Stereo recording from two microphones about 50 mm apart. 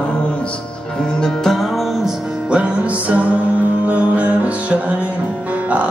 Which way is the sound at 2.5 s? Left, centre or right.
Right.